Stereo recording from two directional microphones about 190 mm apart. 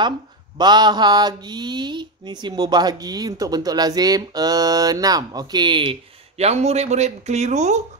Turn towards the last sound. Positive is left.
turn(degrees=-40)  # may be behind; listen again after turning